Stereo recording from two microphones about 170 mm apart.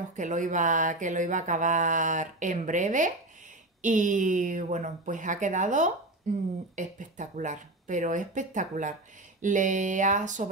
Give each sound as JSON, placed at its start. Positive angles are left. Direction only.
{"t": 0.1, "sound": "speech", "side_deg": -50}